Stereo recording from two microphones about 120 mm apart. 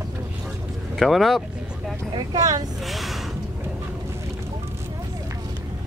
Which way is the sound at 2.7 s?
Centre (ahead or behind).